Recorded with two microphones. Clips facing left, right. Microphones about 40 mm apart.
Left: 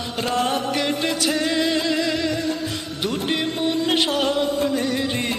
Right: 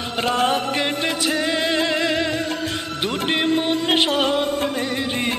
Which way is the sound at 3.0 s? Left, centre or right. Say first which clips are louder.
Right 2 dB; right.